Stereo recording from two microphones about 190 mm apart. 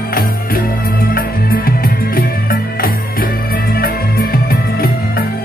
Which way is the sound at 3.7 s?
50° left (ahead or behind).